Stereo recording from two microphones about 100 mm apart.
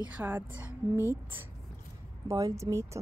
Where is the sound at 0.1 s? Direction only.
15° right (ahead or behind).